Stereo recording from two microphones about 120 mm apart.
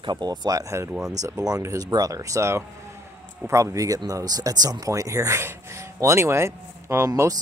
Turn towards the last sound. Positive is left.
turn(degrees=-30)  # may be behind; listen again after turning